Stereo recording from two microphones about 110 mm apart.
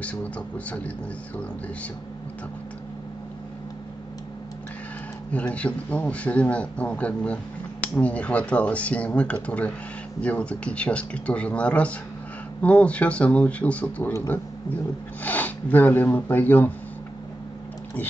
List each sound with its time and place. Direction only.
0.0 s speech: 10° left (ahead or behind)
5.3 s speech: 10° left (ahead or behind)